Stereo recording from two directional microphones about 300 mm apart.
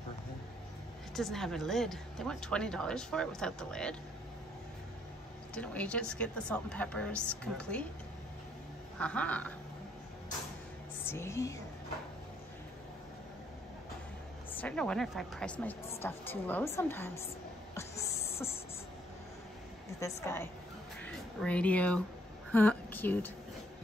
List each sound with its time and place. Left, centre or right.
1.1 s a woman's voice: centre
5.5 s a woman's voice: centre
9.0 s a woman's voice: centre
11.1 s a woman's voice: centre
14.5 s a woman's voice: centre
17.7 s a sound: centre
20.2 s a woman's voice: centre